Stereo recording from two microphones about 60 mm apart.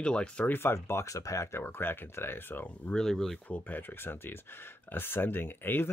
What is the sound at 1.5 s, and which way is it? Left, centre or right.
Speech, left.